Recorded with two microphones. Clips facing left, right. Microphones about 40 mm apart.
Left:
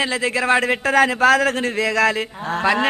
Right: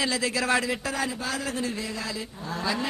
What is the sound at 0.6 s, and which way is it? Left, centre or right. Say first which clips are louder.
A man's voice: left 12 dB; left.